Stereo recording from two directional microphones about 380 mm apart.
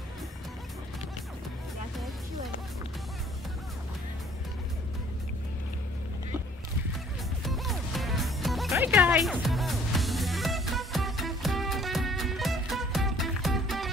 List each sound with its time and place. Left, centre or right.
7.4 s music: centre